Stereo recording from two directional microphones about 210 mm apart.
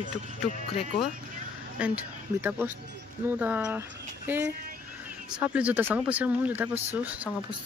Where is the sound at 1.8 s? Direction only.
5° right (ahead or behind).